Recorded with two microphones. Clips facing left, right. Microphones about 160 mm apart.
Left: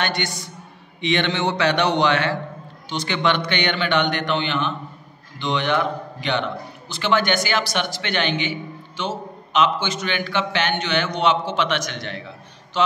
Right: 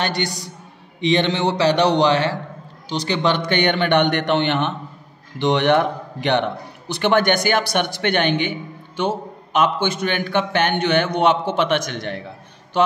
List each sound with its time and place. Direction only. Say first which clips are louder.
0.0 s a man's voice: right 2 dB; 35° right (ahead or behind); by 5.8 s 70° right (ahead or behind)
6.9 s a man's voice: right 4 dB; 55° right (ahead or behind)